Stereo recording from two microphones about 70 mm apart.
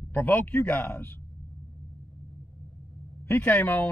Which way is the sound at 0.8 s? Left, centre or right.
Left.